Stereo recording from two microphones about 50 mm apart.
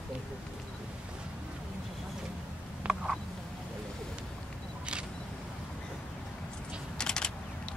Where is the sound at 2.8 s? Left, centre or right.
Right.